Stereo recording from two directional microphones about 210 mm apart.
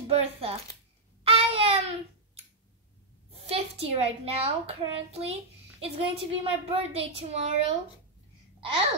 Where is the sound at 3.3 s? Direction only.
30° right (ahead or behind).